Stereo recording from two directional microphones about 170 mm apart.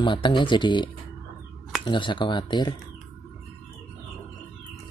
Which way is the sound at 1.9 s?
30° left (ahead or behind).